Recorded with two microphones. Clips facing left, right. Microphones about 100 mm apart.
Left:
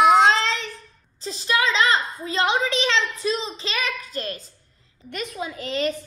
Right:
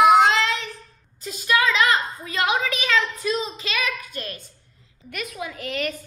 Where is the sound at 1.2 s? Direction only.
30° left (ahead or behind).